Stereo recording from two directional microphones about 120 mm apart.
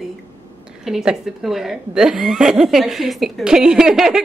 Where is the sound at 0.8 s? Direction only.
5° right (ahead or behind).